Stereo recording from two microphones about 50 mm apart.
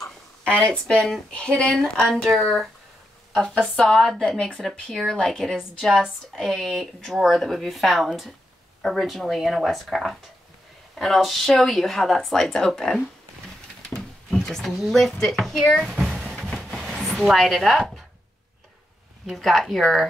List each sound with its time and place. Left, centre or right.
0.5 s speech: centre
2.0 s speech: centre
14.3 s a sound: centre
14.7 s speech: centre
15.9 s drum: centre
16.3 s a sound: centre
17.0 s speech: centre
19.3 s speech: centre